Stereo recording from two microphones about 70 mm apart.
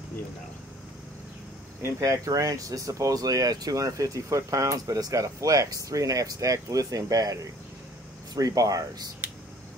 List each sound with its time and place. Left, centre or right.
2.0 s speech: right
8.4 s speech: right